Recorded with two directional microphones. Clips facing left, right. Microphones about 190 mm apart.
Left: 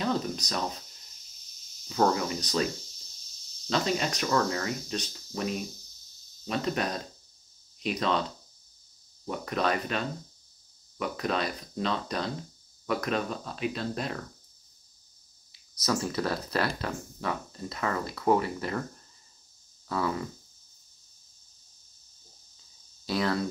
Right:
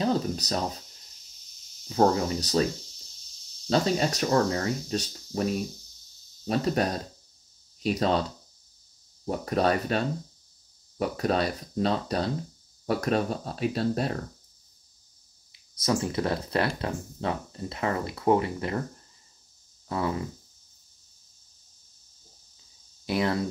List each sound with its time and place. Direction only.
0.0 s speech: 30° right (ahead or behind)
1.9 s speech: 35° right (ahead or behind)
15.8 s speech: 25° right (ahead or behind)
19.9 s speech: 25° right (ahead or behind)
23.0 s speech: 20° right (ahead or behind)